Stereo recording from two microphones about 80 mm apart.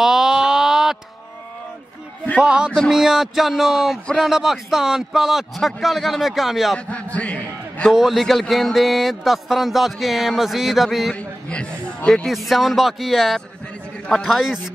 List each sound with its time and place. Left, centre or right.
0.0 s a sound: centre
2.4 s music: centre
2.9 s speech: centre
6.9 s a man's voice: centre
7.9 s speech: centre
11.1 s a man's voice: centre
12.3 s speech: centre